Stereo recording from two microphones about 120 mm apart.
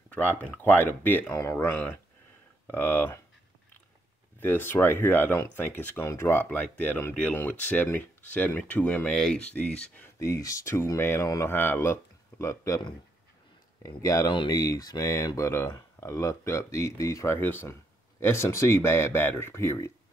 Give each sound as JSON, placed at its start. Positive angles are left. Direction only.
{"t": 0.1, "sound": "speech", "side_deg": 15}
{"t": 4.4, "sound": "speech", "side_deg": 20}
{"t": 10.1, "sound": "speech", "side_deg": 25}
{"t": 13.8, "sound": "speech", "side_deg": 30}